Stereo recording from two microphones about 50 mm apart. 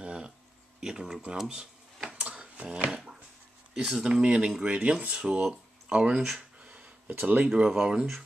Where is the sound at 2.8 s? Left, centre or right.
Centre.